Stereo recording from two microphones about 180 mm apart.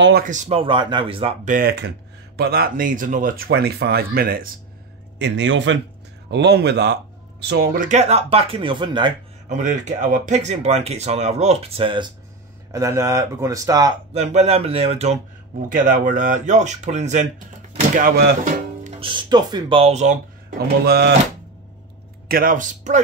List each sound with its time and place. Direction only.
0.2 s speech: 45° right (ahead or behind)
1.4 s speech: 50° right (ahead or behind)
5.2 s a man's voice: 85° right
6.3 s speech: 65° right (ahead or behind); by 9.1 s 25° right (ahead or behind)
9.5 s speech: 45° right (ahead or behind); by 12.1 s 30° right (ahead or behind)
12.7 s speech: 15° right (ahead or behind)
14.1 s speech: 35° right (ahead or behind)
15.7 s speech: 45° right (ahead or behind)
18.9 s speech: 25° right (ahead or behind); by 20.5 s 40° right (ahead or behind)
20.5 s speech: 65° right (ahead or behind)
22.3 s speech: 50° right (ahead or behind)